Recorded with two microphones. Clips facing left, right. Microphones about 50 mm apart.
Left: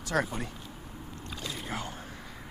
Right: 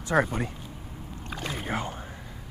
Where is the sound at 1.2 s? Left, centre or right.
Right.